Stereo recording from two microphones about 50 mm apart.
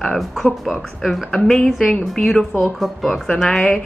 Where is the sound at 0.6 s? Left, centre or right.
Centre.